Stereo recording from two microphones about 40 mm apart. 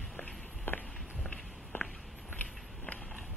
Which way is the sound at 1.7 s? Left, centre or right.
Left.